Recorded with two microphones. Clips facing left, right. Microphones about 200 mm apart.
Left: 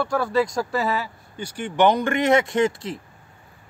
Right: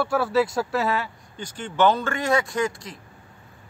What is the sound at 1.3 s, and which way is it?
A man's voice, 10° left (ahead or behind).